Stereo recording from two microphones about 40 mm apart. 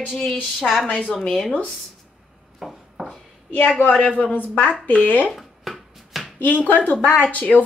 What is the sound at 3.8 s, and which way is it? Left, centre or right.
Speech, left.